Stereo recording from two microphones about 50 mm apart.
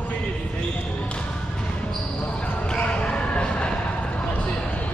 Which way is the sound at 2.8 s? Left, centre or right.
Left.